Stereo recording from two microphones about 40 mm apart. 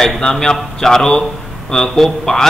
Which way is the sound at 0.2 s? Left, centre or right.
Centre.